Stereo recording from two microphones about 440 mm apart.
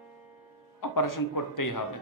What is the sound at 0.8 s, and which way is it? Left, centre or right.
Speech, left.